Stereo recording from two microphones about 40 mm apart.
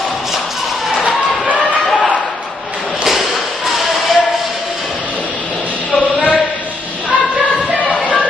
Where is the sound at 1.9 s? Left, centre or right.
Left.